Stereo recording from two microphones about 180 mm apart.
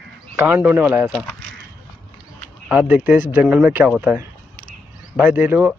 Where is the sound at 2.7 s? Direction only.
10° right (ahead or behind).